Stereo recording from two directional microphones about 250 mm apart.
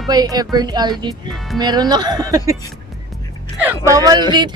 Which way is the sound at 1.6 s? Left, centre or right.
Centre.